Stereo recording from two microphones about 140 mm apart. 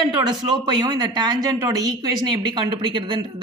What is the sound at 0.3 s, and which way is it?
Speech, 30° right (ahead or behind).